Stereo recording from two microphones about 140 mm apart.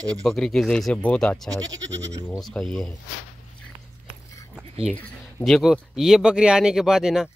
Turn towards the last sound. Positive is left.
turn(degrees=-5)  # may be behind; listen again after turning